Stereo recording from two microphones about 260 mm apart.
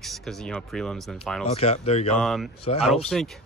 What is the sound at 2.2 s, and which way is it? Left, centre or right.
Speech, centre.